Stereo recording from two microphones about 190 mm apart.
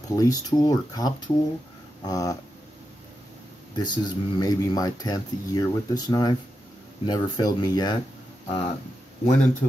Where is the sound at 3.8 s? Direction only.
20° left (ahead or behind).